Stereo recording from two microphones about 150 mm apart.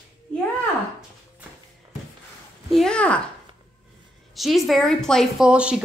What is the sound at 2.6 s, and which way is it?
Speech, centre (ahead or behind).